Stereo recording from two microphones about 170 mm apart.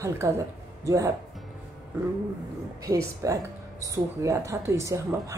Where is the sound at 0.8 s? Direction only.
20° right (ahead or behind).